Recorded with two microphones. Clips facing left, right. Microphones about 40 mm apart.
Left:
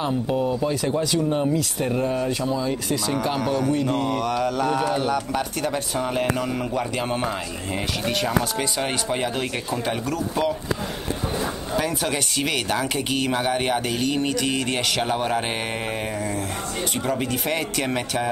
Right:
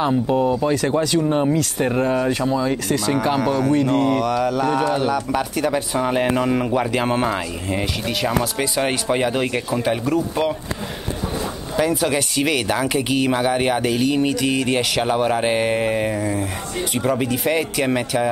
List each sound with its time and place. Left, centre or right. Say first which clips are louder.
0.0 s speech: right 5 dB; centre
0.7 s speech: right 4 dB; right
3.3 s speech: right 4 dB; centre
5.9 s speech: right 4 dB; right
7.7 s speech: right 2 dB; centre
11.7 s speech: right 6 dB; centre